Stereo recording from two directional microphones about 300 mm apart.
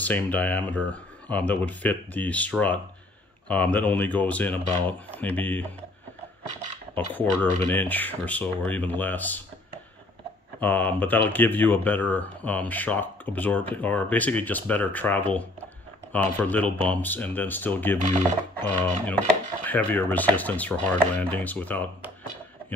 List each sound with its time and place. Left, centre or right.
0.0 s speech: centre
7.2 s speech: centre
10.6 s speech: centre